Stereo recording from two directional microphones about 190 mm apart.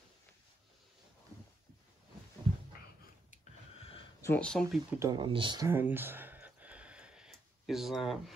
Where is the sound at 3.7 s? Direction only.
30° left (ahead or behind).